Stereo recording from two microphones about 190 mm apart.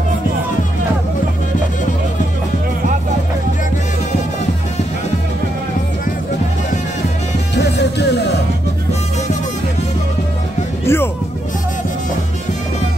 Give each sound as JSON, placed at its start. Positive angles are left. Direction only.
{"t": 7.5, "sound": "music", "side_deg": 60}
{"t": 10.9, "sound": "music", "side_deg": 15}